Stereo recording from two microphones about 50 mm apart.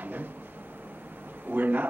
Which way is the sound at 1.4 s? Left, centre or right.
Right.